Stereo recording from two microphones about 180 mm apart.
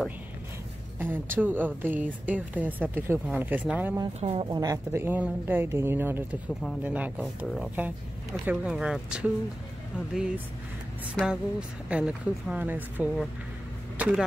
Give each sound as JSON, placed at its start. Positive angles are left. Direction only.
{"t": 0.9, "sound": "speech", "side_deg": -10}
{"t": 4.2, "sound": "speech", "side_deg": -30}
{"t": 4.5, "sound": "speech", "side_deg": -20}
{"t": 11.9, "sound": "speech", "side_deg": -5}